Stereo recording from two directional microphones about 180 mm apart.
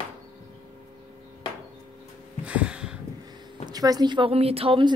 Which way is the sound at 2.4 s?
5° right (ahead or behind).